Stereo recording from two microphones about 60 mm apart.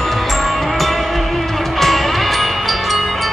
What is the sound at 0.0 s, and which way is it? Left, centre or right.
Music, centre.